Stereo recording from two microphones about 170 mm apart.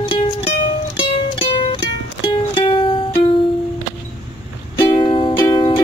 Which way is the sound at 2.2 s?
30° left (ahead or behind).